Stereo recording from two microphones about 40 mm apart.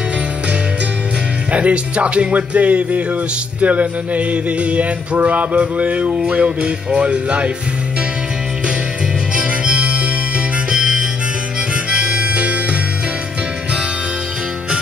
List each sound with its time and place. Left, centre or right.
1.5 s a sound: right
9.3 s music: right
10.7 s harmonica: right